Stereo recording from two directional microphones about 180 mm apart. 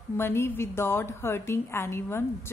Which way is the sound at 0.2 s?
15° left (ahead or behind).